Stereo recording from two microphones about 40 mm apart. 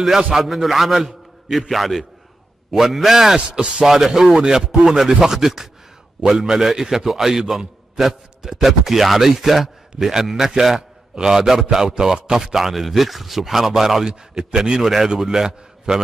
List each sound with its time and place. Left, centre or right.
0.3 s a man's voice: centre
3.8 s a man's voice: centre